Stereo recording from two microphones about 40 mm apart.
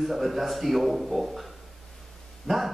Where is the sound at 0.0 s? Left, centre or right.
Centre.